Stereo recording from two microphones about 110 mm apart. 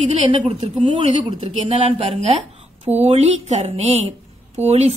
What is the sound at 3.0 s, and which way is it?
A woman's voice, 75° right (ahead or behind).